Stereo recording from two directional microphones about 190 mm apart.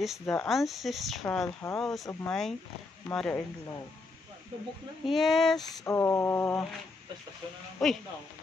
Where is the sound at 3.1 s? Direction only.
5° left (ahead or behind).